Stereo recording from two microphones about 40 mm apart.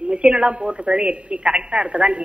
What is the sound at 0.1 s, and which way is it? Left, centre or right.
A woman's voice, right.